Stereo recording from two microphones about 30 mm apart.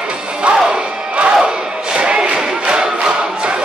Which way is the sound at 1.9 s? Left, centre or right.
Right.